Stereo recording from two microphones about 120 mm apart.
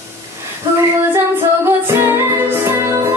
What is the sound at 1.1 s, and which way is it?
Music, 20° right (ahead or behind).